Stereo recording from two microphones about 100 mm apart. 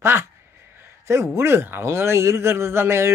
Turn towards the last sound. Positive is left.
turn(degrees=-25)  # may be behind; listen again after turning